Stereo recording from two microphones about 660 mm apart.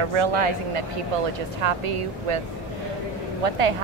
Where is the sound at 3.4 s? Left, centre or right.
Right.